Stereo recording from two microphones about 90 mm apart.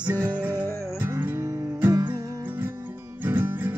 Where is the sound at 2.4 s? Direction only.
20° right (ahead or behind).